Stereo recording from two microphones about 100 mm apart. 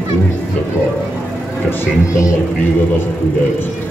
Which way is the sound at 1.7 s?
30° left (ahead or behind).